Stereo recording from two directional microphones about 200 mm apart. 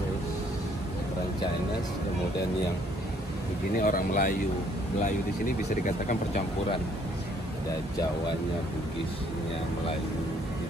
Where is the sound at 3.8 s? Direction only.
40° left (ahead or behind).